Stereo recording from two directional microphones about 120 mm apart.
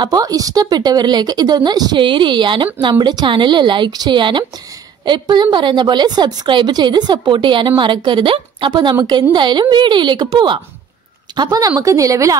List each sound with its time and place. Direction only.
0.0 s a woman's voice: 30° right (ahead or behind)